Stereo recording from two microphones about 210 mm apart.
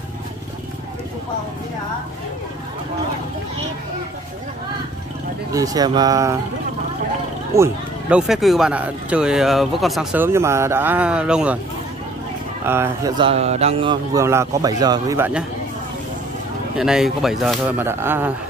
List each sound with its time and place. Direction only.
5.5 s a man's voice: 15° right (ahead or behind)
7.5 s speech: 10° right (ahead or behind)
12.6 s a man's voice: 10° right (ahead or behind)
13.2 s a man's voice: 30° right (ahead or behind); by 15.4 s 10° right (ahead or behind)
16.7 s speech: centre (ahead or behind)